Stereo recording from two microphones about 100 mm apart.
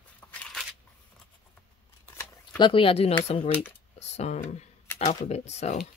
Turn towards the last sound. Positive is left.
turn(degrees=90)